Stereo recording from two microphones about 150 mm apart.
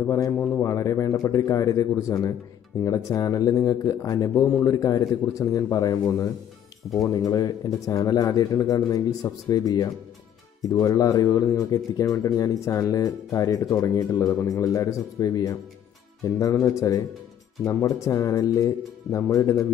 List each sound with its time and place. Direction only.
0.0 s speech: 15° left (ahead or behind)